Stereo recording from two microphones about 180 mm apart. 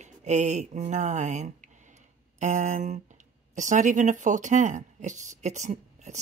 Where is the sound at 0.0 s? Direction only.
40° right (ahead or behind).